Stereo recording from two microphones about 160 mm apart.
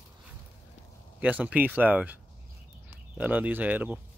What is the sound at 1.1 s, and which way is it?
Speech, 10° right (ahead or behind).